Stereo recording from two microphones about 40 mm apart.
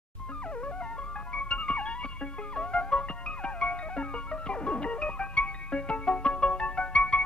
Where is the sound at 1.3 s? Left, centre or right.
Left.